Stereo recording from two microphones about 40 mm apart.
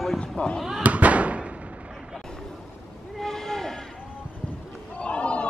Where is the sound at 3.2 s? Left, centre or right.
Centre.